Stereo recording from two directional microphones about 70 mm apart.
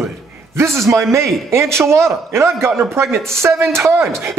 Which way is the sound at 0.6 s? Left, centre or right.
Right.